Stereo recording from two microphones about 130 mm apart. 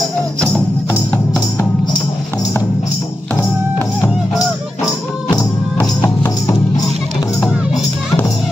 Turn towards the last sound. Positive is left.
turn(degrees=30)  # may be behind; listen again after turning